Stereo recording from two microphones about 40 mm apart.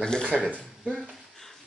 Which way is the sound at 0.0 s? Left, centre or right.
Centre.